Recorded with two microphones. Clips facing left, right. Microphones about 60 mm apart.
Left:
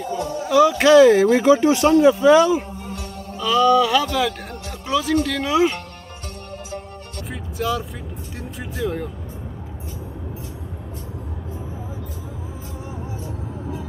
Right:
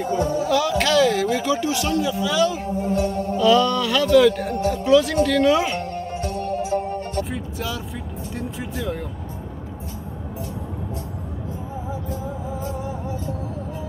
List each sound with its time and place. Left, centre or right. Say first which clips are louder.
0.5 s speech: left 10 dB; centre; by 2.4 s left
3.3 s speech: left 2 dB; centre
7.2 s speech: left 4 dB; centre
8.4 s music: left 2 dB; centre